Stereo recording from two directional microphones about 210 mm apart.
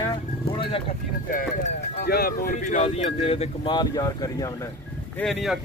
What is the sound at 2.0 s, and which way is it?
Speech, 50° left (ahead or behind).